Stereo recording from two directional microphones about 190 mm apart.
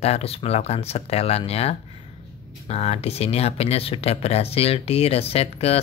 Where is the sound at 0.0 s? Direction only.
30° left (ahead or behind).